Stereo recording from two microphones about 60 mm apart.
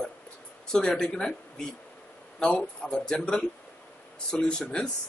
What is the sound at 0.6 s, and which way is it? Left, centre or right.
Speech, centre.